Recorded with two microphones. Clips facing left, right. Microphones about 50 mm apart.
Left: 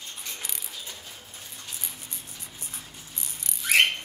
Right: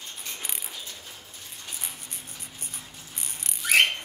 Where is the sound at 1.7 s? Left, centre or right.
Right.